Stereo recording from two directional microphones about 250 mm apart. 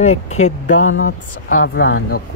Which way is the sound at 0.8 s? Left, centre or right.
Left.